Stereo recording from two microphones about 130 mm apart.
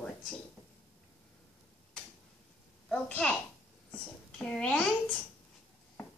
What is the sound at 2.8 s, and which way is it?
A woman's voice, 10° left (ahead or behind).